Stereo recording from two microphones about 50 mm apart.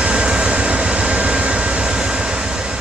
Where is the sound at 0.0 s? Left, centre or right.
Centre.